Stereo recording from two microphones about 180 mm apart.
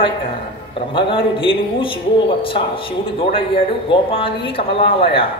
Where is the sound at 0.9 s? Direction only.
30° left (ahead or behind).